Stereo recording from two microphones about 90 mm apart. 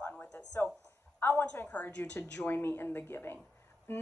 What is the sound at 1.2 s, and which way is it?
A woman's voice, 20° left (ahead or behind).